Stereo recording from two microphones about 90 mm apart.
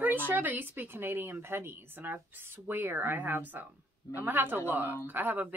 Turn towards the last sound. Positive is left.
turn(degrees=-20)  # may be behind; listen again after turning